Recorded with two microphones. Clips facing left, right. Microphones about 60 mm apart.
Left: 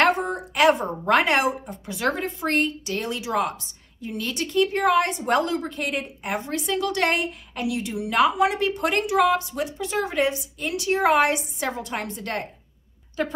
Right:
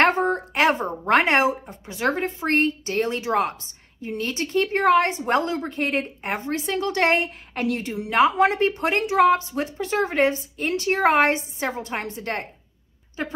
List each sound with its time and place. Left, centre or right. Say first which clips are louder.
0.0 s a sound: right 2 dB; right
1.9 s speech: right 2 dB; right
13.2 s a woman's voice: left 3 dB; right